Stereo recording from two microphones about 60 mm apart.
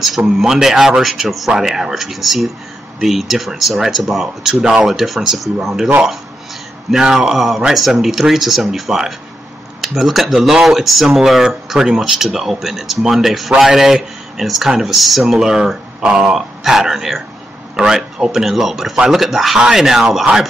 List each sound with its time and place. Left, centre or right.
0.4 s speech: centre
6.9 s speech: centre
15.3 s speech: centre